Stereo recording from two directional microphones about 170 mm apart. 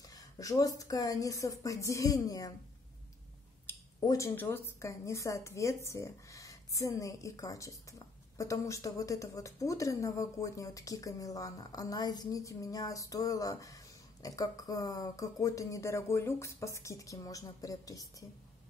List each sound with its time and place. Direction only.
0.0 s a woman's voice: 20° left (ahead or behind)
3.6 s a woman's voice: 15° left (ahead or behind)